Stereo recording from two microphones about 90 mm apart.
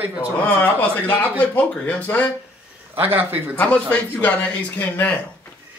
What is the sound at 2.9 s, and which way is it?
Speech, 20° right (ahead or behind).